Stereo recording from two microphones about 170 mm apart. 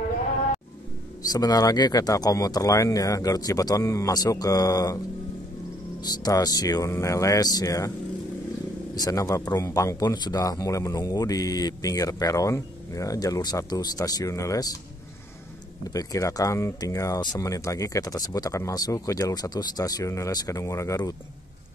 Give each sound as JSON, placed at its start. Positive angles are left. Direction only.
{"t": 1.3, "sound": "speech", "side_deg": 20}
{"t": 5.9, "sound": "speech", "side_deg": 25}
{"t": 8.9, "sound": "speech", "side_deg": 20}
{"t": 15.9, "sound": "speech", "side_deg": 20}